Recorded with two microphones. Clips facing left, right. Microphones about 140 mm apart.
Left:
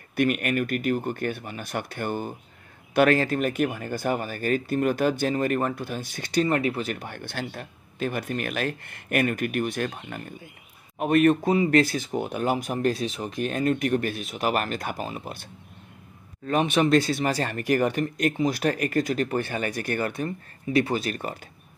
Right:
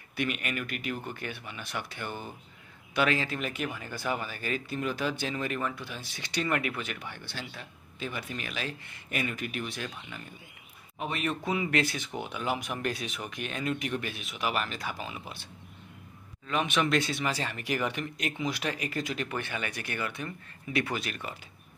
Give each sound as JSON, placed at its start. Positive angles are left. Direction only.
{"t": 0.1, "sound": "speech", "side_deg": 50}
{"t": 11.5, "sound": "speech", "side_deg": 35}
{"t": 16.4, "sound": "speech", "side_deg": 40}